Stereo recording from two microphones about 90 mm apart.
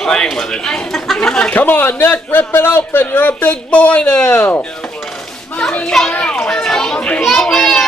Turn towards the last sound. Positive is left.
turn(degrees=5)  # may be behind; listen again after turning